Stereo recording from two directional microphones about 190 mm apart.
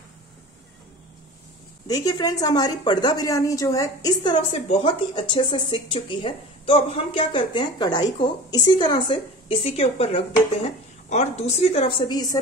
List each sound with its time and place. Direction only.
1.9 s a woman's voice: 20° left (ahead or behind)
12.1 s speech: 20° left (ahead or behind)